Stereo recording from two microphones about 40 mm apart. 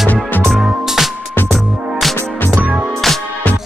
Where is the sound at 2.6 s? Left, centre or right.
Right.